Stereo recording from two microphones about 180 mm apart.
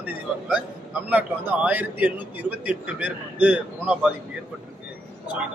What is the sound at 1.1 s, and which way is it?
Speech, 10° right (ahead or behind).